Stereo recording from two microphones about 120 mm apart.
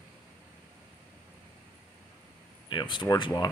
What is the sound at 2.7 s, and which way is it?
Speech, 40° left (ahead or behind).